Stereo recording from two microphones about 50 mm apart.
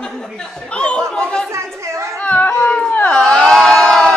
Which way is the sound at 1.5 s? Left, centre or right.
Right.